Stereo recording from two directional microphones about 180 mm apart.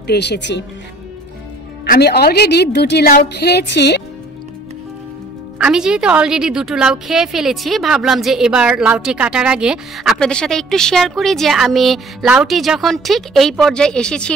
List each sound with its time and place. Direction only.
0.0 s speech: 65° left (ahead or behind)
1.9 s a woman's voice: 65° left (ahead or behind)
5.6 s a woman's voice: 5° right (ahead or behind)